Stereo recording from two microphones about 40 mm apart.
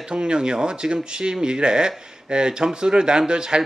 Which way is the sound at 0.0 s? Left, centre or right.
Right.